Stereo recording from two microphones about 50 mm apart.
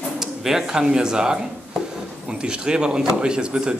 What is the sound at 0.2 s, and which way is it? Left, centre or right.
Speech, centre.